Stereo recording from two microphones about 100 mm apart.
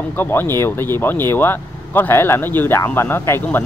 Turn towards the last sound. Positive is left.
turn(degrees=25)  # may be behind; listen again after turning